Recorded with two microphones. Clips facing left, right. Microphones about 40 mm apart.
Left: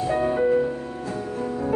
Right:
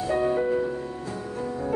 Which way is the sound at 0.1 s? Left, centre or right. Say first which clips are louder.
Left 1 dB; centre.